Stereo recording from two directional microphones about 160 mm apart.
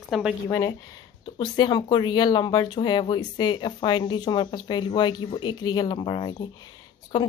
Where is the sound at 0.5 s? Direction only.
20° left (ahead or behind).